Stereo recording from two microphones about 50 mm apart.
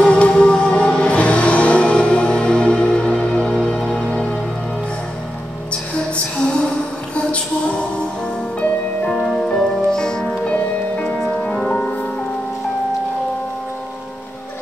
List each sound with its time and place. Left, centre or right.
0.0 s music: left
5.7 s music: left
9.2 s music: centre; by 11.1 s left
11.1 s music: centre